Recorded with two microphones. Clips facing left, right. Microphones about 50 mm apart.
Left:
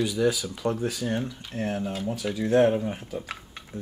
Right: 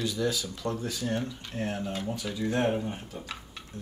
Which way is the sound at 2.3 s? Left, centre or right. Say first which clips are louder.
Left 8 dB; left.